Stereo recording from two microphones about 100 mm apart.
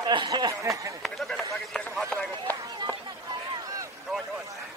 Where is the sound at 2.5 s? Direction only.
15° left (ahead or behind).